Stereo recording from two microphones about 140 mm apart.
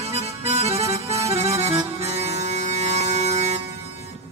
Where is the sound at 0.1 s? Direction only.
50° right (ahead or behind).